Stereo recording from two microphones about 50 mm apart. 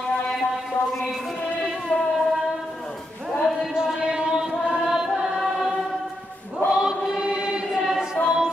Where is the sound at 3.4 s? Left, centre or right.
Centre.